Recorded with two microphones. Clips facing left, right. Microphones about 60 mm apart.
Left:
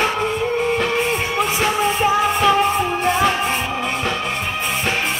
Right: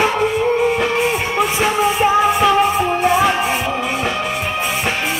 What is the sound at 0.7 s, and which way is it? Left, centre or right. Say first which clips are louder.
Music: right 2 dB; centre.